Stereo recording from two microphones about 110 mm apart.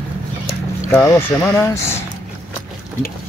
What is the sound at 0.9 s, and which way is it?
Speech, 25° left (ahead or behind).